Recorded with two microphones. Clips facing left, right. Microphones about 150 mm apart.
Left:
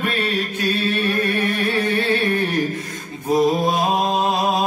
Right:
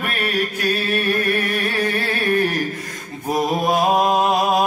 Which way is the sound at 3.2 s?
25° right (ahead or behind).